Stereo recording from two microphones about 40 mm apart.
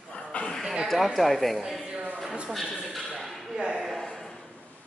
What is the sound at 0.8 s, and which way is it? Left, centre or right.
Speech, centre.